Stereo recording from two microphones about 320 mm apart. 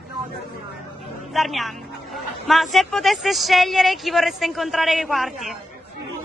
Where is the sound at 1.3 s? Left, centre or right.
Centre.